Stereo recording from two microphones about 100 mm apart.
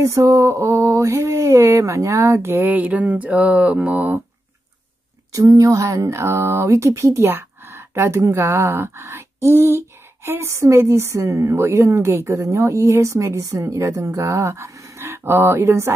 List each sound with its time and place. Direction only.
0.0 s speech: 30° right (ahead or behind)
2.7 s mantra: 15° right (ahead or behind)
5.3 s speech: 35° right (ahead or behind)